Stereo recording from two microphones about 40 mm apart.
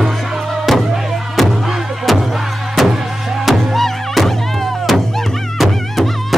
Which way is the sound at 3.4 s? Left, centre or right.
Centre.